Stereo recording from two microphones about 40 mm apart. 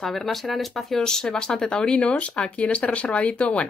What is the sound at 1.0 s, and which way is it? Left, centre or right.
Speech, centre.